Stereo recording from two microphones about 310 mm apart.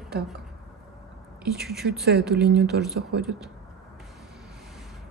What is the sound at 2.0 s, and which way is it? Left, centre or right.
Speech, right.